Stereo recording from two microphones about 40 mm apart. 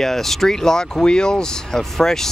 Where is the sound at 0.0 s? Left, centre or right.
Centre.